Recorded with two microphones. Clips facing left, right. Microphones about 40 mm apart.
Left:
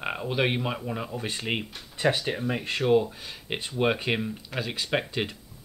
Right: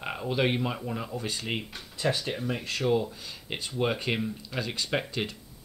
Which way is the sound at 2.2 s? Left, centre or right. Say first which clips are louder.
Left 3 dB; centre.